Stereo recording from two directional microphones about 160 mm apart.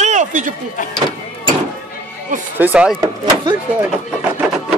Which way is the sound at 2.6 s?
10° right (ahead or behind).